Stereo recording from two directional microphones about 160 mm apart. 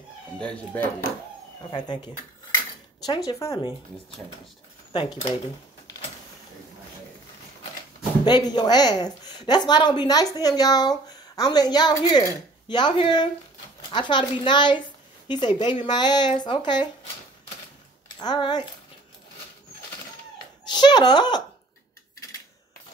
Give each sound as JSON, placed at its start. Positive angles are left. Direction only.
{"t": 0.4, "sound": "speech", "side_deg": 5}
{"t": 1.6, "sound": "a woman's voice", "side_deg": 30}
{"t": 4.9, "sound": "speech", "side_deg": 35}
{"t": 8.3, "sound": "a woman's voice", "side_deg": 25}
{"t": 18.2, "sound": "a woman's voice", "side_deg": 25}
{"t": 20.6, "sound": "speech", "side_deg": 25}